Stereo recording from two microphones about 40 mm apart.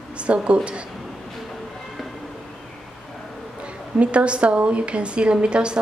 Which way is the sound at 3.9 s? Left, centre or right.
Right.